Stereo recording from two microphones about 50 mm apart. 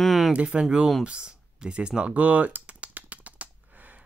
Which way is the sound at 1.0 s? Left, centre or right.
Right.